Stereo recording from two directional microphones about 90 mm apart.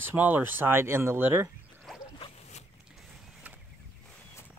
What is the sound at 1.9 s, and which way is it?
Zipper, 5° left (ahead or behind).